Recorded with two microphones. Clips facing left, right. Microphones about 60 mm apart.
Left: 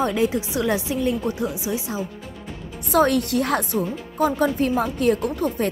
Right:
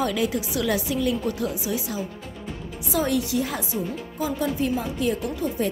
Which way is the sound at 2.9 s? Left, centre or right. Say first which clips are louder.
Left 5 dB; left.